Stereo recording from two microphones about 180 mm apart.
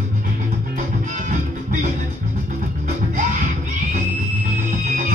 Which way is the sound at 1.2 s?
45° right (ahead or behind).